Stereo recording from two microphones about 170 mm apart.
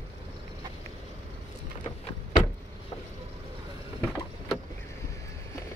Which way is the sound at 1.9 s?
25° left (ahead or behind).